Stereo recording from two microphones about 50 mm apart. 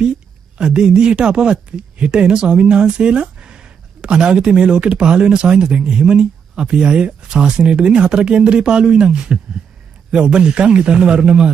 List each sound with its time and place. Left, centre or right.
0.6 s speech: centre